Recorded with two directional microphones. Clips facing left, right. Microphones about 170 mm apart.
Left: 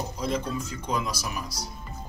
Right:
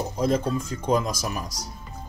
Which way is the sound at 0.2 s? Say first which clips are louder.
Right 6 dB; 50° right (ahead or behind).